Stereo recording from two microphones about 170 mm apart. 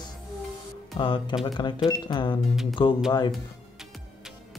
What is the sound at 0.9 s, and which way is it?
Speech, 30° left (ahead or behind).